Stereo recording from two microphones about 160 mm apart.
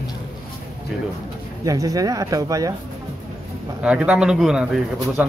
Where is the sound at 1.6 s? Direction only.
20° right (ahead or behind).